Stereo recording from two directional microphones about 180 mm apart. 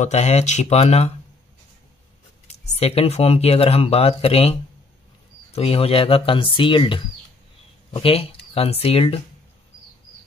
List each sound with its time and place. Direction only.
0.0 s speech: 40° left (ahead or behind)
2.4 s speech: 35° left (ahead or behind)